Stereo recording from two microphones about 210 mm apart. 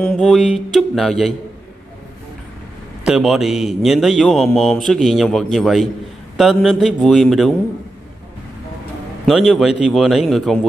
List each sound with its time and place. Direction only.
0.0 s speech: 5° left (ahead or behind)
3.1 s speech: centre (ahead or behind)
9.5 s speech: centre (ahead or behind)